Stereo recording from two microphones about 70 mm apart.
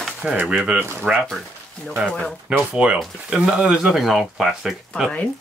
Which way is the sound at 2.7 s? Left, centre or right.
Centre.